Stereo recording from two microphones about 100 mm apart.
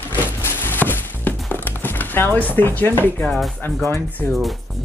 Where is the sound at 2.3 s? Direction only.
20° left (ahead or behind).